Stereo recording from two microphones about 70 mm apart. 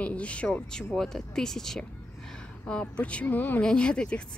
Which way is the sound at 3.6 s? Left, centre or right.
Centre.